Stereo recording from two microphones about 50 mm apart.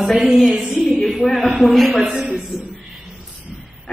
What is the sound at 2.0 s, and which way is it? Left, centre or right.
Speech, centre.